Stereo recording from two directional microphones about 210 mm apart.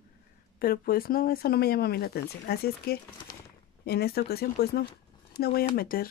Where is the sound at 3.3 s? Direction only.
20° left (ahead or behind).